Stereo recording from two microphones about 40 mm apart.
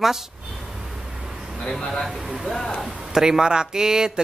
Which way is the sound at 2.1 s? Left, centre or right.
Centre.